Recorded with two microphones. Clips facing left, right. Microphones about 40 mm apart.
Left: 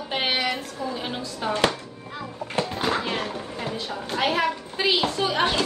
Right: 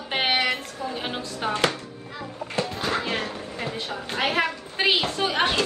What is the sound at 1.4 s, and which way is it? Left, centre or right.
Speech, right.